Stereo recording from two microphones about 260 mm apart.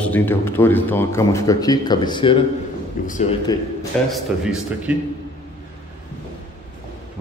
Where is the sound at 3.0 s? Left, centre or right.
Left.